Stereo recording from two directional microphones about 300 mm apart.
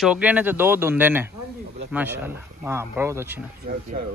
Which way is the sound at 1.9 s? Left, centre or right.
Centre.